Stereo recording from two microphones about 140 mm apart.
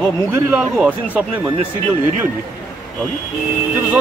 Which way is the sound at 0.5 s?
5° right (ahead or behind).